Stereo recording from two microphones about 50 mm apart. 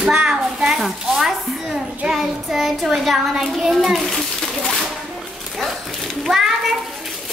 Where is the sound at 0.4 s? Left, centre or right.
Centre.